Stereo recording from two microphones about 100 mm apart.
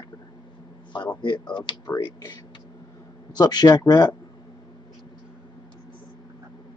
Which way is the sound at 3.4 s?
45° left (ahead or behind).